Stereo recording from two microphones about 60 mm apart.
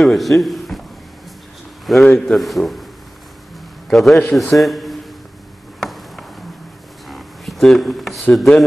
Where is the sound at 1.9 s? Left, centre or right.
Centre.